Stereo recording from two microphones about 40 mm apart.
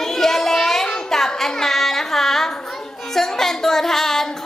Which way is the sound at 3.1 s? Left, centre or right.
Centre.